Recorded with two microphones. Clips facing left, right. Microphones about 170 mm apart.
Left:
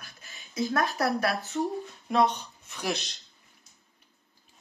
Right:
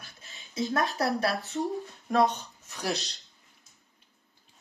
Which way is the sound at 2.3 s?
40° right (ahead or behind).